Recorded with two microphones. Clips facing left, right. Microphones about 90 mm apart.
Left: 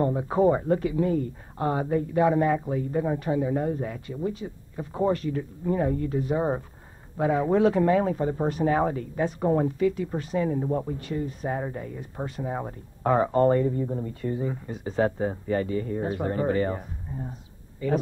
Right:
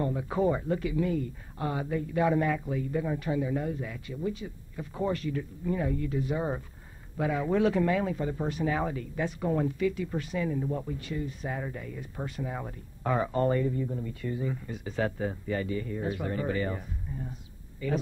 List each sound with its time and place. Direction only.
0.0 s speech: 35° left (ahead or behind)